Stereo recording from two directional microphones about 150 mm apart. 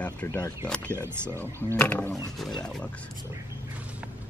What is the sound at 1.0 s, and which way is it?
Speech, 15° right (ahead or behind).